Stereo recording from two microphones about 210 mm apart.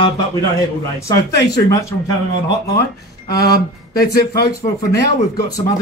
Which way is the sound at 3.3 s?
15° left (ahead or behind).